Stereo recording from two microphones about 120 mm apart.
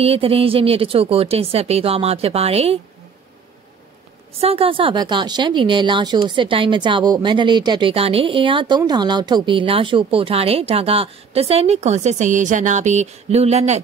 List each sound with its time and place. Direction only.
0.0 s speech: 55° right (ahead or behind)
4.3 s speech: 55° right (ahead or behind)
5.0 s speech: 35° right (ahead or behind); by 13.7 s 60° right (ahead or behind)